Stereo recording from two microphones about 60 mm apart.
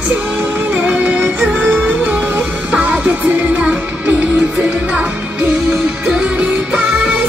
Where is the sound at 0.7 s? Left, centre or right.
Right.